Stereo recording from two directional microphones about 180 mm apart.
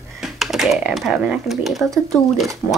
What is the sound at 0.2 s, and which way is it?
Speech, centre (ahead or behind).